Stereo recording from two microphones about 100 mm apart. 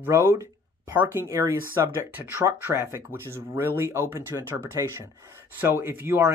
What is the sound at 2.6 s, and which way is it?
Speech, 25° right (ahead or behind).